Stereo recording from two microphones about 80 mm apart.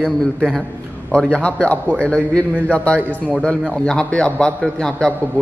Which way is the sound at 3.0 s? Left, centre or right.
Right.